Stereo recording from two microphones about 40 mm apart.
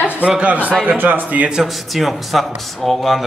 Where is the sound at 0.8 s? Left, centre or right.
Right.